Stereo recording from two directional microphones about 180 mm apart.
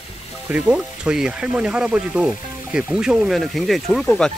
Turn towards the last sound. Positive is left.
turn(degrees=5)  # may be behind; listen again after turning